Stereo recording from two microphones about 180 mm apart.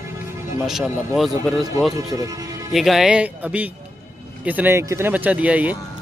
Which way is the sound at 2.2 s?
20° right (ahead or behind).